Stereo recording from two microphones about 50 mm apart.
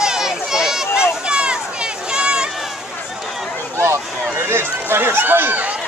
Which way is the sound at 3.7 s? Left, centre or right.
Right.